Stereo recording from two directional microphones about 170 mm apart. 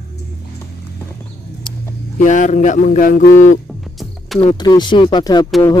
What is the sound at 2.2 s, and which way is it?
Speech, 45° left (ahead or behind).